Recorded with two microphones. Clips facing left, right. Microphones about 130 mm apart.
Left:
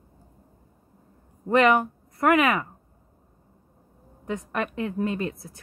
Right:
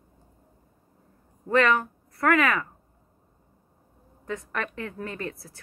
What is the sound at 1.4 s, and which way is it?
Speech, 20° left (ahead or behind).